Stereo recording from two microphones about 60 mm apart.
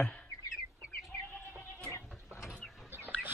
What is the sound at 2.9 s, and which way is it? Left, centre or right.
Chicken, right.